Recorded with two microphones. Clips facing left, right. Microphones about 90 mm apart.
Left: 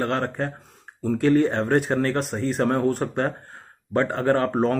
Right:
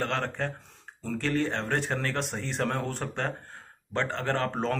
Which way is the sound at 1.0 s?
15° left (ahead or behind).